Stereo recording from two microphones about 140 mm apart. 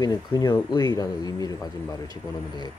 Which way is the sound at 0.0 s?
30° left (ahead or behind).